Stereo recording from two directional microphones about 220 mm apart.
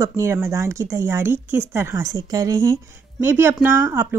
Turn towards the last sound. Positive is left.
turn(degrees=-10)  # may be behind; listen again after turning